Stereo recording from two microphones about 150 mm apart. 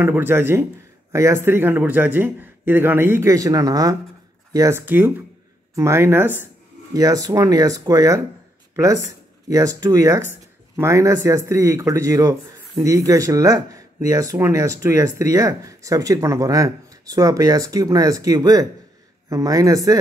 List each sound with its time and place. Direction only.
0.0 s a man's voice: 15° right (ahead or behind)